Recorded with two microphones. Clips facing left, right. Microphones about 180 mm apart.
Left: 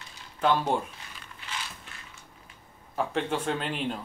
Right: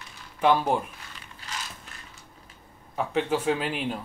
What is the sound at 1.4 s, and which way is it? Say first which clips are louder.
Ratchet: right 1 dB; 40° right (ahead or behind).